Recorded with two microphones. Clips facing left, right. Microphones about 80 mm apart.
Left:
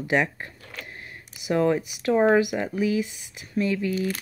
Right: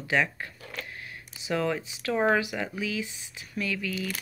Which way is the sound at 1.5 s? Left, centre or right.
Left.